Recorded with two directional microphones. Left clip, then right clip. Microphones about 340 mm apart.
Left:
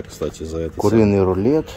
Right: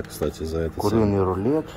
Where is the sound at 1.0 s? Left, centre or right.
Left.